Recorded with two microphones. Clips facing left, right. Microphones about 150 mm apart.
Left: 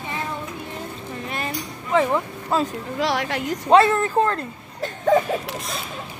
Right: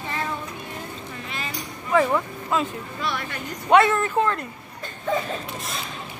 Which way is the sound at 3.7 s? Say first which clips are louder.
Left 2 dB; 30° left (ahead or behind).